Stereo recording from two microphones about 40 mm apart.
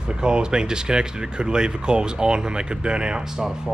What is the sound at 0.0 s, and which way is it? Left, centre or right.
Speech, right.